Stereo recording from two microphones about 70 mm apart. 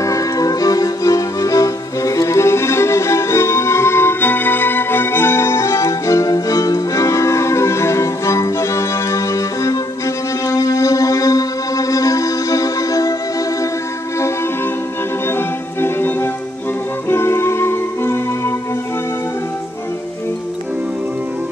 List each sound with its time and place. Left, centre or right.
0.0 s music: left
15.2 s music: left